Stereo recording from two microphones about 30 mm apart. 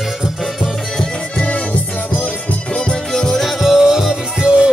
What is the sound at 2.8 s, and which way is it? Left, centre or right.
Music, left.